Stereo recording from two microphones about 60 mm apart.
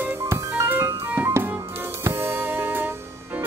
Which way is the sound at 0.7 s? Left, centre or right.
Right.